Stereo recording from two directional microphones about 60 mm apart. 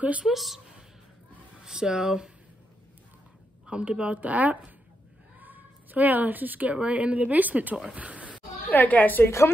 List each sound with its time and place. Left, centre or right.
0.2 s a woman's voice: centre
1.6 s speech: centre
3.6 s a woman's voice: centre
8.6 s a woman's voice: left
9.2 s speech: left